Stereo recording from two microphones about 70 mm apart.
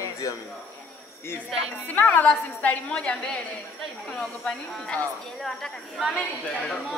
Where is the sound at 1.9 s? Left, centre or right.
Left.